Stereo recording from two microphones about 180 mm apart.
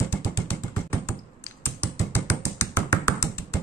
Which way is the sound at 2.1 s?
15° left (ahead or behind).